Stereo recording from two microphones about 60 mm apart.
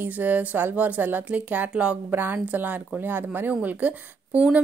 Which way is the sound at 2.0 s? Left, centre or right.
Right.